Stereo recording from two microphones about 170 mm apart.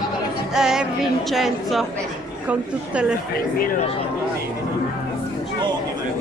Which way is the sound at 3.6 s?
55° left (ahead or behind).